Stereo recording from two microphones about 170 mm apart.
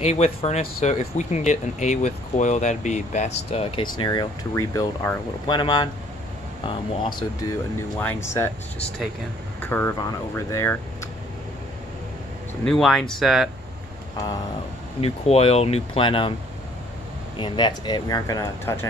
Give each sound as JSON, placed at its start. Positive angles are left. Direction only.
{"t": 0.0, "sound": "speech", "side_deg": 40}
{"t": 7.0, "sound": "speech", "side_deg": 25}
{"t": 8.0, "sound": "speech", "side_deg": 15}
{"t": 9.7, "sound": "speech", "side_deg": 10}
{"t": 12.6, "sound": "speech", "side_deg": 5}
{"t": 15.0, "sound": "speech", "side_deg": 35}
{"t": 17.4, "sound": "speech", "side_deg": 25}